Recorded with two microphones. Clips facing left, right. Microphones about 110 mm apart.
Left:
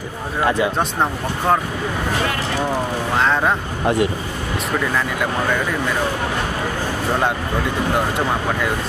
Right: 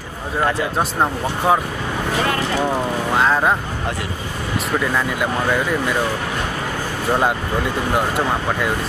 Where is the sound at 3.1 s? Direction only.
5° right (ahead or behind).